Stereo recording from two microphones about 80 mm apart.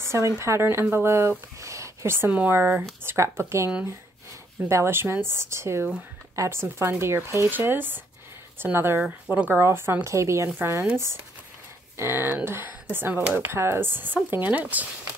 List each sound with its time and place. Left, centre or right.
0.0 s speech: right
7.4 s speech: right
12.0 s speech: right